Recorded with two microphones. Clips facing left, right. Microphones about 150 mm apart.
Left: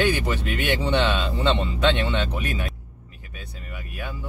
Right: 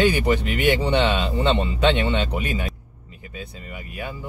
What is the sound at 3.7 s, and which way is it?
Speech, 20° right (ahead or behind).